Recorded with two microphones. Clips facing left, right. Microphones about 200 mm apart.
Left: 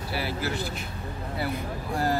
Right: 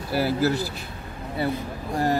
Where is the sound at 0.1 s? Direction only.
40° right (ahead or behind).